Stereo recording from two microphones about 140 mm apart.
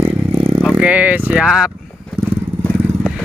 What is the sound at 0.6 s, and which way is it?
Vehicle, 5° right (ahead or behind).